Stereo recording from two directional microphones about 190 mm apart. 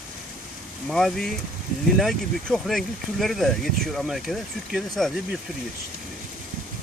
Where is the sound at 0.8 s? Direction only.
Centre (ahead or behind).